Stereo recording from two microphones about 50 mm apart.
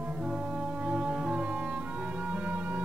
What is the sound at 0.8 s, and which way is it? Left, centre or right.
Music, right.